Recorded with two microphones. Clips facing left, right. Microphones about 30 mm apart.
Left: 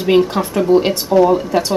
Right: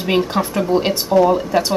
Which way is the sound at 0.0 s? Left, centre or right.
Centre.